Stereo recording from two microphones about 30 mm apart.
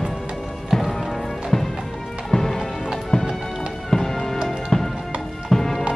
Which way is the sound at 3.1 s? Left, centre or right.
Left.